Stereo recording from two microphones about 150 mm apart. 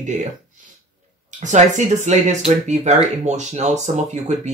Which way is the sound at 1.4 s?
55° right (ahead or behind).